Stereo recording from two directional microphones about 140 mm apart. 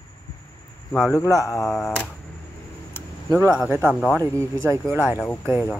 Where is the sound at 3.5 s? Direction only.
10° right (ahead or behind).